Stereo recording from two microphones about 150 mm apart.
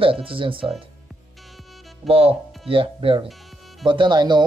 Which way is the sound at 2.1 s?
40° right (ahead or behind).